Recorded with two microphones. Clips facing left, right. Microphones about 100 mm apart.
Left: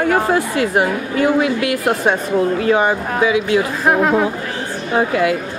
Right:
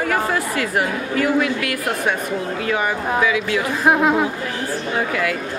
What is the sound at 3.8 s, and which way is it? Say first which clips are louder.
Speech: right 1 dB; centre (ahead or behind).